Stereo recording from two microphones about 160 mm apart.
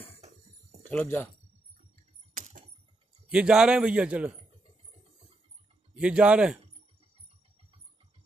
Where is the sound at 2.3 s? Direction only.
55° right (ahead or behind).